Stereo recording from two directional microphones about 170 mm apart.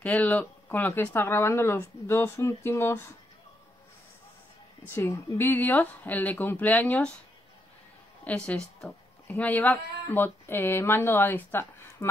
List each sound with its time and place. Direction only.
0.0 s speech: 10° left (ahead or behind)
4.8 s speech: 15° left (ahead or behind)
8.2 s a woman's voice: 5° left (ahead or behind)